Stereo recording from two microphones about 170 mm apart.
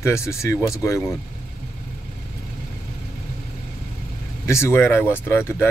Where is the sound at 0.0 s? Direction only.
15° left (ahead or behind).